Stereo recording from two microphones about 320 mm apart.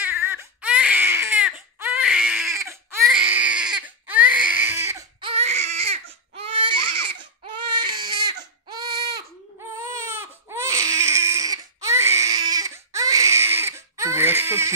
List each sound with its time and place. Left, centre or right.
0.0 s baby cry: centre
7.8 s baby cry: centre